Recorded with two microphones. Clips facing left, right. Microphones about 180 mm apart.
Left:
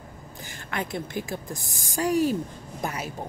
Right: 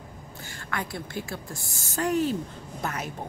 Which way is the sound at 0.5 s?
20° left (ahead or behind).